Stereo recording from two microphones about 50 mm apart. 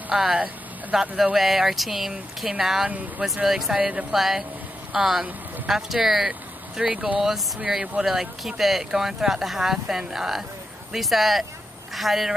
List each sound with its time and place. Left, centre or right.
0.1 s speech: centre